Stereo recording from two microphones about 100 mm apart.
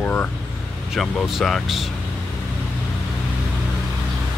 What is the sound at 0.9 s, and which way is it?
Speech, centre (ahead or behind).